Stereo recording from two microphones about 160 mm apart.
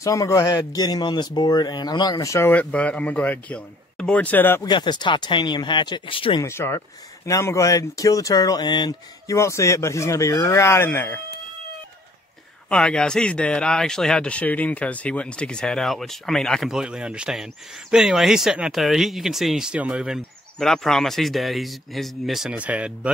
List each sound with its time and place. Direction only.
0.0 s speech: 20° left (ahead or behind)
4.6 s speech: 25° left (ahead or behind)
6.4 s speech: 15° left (ahead or behind)
12.6 s speech: 5° left (ahead or behind)